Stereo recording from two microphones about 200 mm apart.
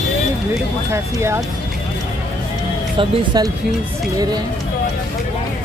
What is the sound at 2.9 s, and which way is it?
Speech, 20° right (ahead or behind).